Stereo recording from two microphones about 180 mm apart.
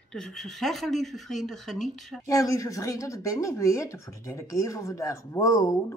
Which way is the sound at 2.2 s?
20° left (ahead or behind).